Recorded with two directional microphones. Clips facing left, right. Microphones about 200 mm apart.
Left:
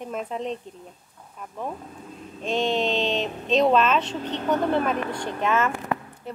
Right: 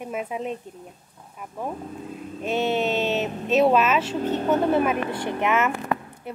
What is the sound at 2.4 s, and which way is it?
Speech, 5° right (ahead or behind).